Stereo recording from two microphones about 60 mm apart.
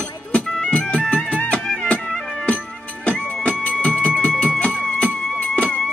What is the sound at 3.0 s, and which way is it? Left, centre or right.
Music, left.